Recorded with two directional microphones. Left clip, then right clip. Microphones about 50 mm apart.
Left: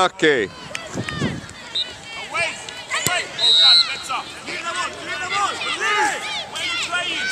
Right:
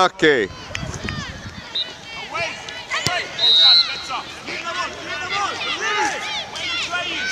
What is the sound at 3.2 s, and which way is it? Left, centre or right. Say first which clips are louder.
Basketball bounce: right 1 dB; centre.